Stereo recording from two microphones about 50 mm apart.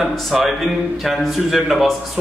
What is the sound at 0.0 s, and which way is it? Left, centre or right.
A man's voice, centre.